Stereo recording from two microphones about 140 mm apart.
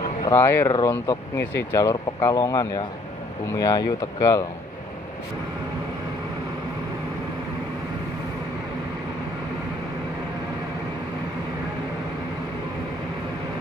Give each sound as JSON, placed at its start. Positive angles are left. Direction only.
{"t": 0.2, "sound": "speech", "side_deg": 20}